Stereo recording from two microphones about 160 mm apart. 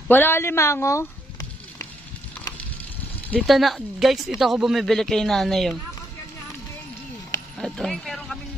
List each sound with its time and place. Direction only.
0.1 s a woman's voice: 15° left (ahead or behind)
3.3 s speech: 5° left (ahead or behind)
7.5 s a sound: 5° left (ahead or behind)